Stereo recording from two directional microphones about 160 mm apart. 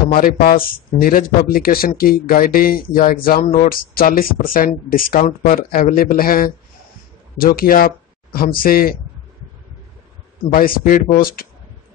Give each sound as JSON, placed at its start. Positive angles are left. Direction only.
{"t": 0.0, "sound": "speech", "side_deg": 65}
{"t": 10.5, "sound": "speech", "side_deg": 60}